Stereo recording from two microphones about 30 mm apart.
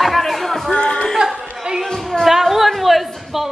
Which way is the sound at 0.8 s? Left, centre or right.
Left.